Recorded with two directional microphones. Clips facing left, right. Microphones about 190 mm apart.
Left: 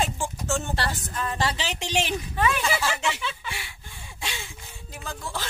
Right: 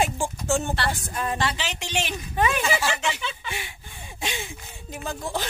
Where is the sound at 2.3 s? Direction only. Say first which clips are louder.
Right 3 dB; 20° right (ahead or behind).